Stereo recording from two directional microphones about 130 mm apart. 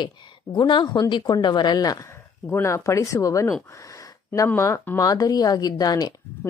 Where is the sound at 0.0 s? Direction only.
35° left (ahead or behind).